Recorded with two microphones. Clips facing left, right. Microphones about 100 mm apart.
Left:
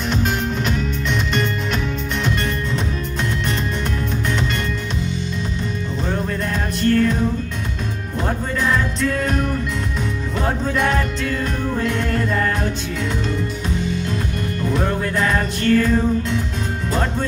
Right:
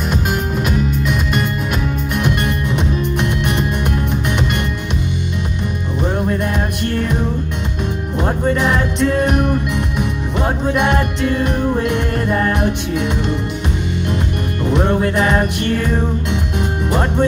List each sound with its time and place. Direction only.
6.8 s music: 20° right (ahead or behind)
8.6 s music: 20° right (ahead or behind)
14.6 s music: 20° right (ahead or behind)